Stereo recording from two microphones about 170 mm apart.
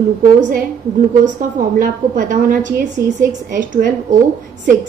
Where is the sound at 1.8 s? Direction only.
50° right (ahead or behind).